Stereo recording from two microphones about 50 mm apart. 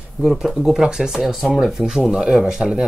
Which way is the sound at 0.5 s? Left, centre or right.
Centre.